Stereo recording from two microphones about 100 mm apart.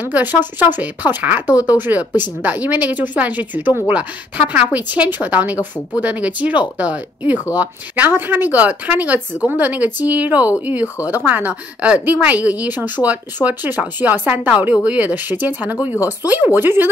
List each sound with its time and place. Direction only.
0.0 s a woman's voice: 20° right (ahead or behind)